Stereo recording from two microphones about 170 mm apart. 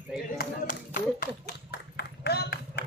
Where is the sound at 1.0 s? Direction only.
55° left (ahead or behind).